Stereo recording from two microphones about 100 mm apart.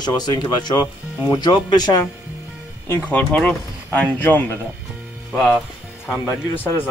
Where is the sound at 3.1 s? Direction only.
10° left (ahead or behind).